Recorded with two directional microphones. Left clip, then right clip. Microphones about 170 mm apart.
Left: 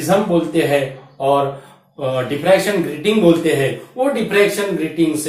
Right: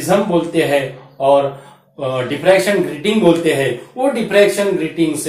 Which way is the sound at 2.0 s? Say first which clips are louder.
Right 2 dB; 25° right (ahead or behind).